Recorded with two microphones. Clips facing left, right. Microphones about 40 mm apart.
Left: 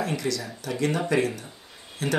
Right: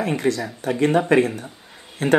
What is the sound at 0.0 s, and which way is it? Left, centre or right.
Speech, right.